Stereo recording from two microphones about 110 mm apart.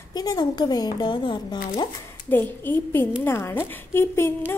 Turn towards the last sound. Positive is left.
turn(degrees=20)  # may be behind; listen again after turning